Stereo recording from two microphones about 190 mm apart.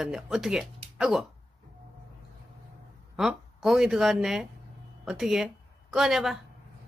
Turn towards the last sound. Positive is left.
turn(degrees=0)  # may be behind; listen again after turning